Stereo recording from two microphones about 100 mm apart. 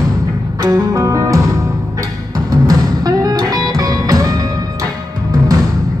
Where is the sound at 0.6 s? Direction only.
30° right (ahead or behind).